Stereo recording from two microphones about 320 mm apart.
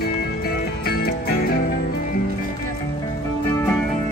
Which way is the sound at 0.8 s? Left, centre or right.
Left.